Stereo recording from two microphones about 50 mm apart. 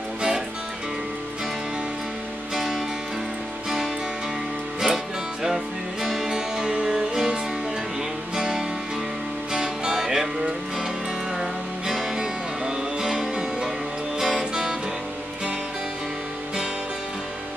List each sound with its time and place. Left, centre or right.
2.5 s music: centre
4.7 s music: centre
8.4 s music: centre